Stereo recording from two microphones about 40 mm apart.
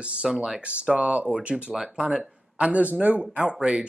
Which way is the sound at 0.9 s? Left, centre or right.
Right.